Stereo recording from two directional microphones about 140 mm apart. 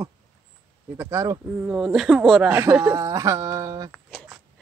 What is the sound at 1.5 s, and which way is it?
Speech, 10° right (ahead or behind).